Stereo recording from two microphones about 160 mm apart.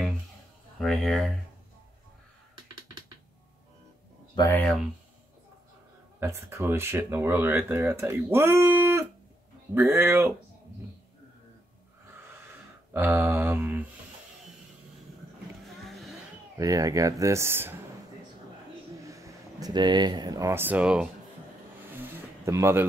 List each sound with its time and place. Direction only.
0.7 s speech: centre (ahead or behind)
4.4 s speech: 15° left (ahead or behind)
6.1 s speech: 15° right (ahead or behind)
12.9 s speech: 15° right (ahead or behind)
15.8 s vehicle: centre (ahead or behind)
16.5 s speech: 20° right (ahead or behind)
18.9 s speech: 20° right (ahead or behind)
22.4 s speech: 15° right (ahead or behind)